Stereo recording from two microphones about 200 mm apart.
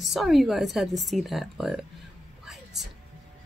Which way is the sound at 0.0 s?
Centre (ahead or behind).